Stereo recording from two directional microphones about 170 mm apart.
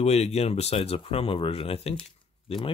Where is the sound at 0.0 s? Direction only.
40° left (ahead or behind).